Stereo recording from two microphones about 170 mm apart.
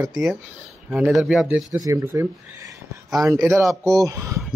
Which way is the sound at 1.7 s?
20° right (ahead or behind).